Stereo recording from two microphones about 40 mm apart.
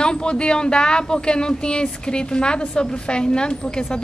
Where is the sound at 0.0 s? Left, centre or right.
Left.